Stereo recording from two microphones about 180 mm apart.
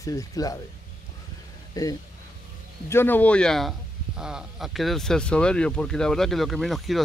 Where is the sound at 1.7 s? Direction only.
20° left (ahead or behind).